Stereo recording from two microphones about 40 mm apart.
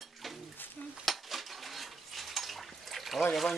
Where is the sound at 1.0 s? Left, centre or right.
Centre.